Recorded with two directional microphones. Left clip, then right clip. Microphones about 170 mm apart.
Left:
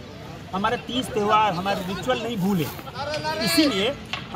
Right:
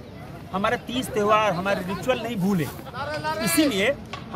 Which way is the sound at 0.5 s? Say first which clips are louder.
Even; 10° right (ahead or behind).